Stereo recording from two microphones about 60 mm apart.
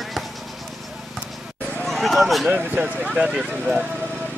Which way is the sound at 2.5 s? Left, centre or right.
Right.